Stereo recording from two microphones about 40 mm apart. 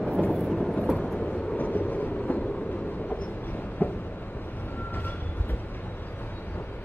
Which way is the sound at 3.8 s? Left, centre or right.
Left.